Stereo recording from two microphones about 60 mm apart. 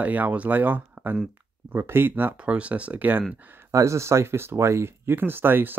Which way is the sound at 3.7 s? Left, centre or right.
Right.